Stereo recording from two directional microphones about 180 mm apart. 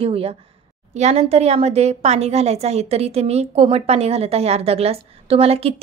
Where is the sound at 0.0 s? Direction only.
30° right (ahead or behind).